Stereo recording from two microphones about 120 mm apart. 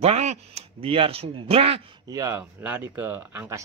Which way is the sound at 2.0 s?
25° right (ahead or behind).